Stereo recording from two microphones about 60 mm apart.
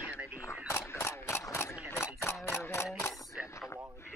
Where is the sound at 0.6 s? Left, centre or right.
Left.